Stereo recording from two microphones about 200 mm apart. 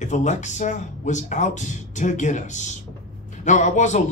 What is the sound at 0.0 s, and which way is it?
A man's voice, 35° left (ahead or behind).